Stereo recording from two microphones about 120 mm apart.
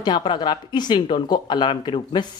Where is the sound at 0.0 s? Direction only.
40° left (ahead or behind).